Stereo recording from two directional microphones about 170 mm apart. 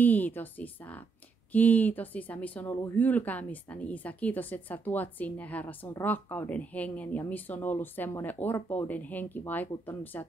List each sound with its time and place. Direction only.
0.0 s speech: 10° left (ahead or behind)